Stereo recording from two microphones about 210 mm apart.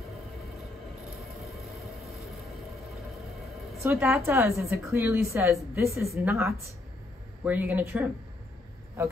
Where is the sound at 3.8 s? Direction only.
10° right (ahead or behind).